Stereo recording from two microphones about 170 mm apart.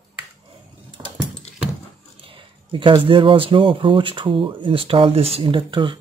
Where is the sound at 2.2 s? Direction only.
30° right (ahead or behind).